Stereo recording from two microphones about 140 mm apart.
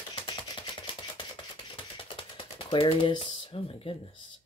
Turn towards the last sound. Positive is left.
turn(degrees=40)  # may be behind; listen again after turning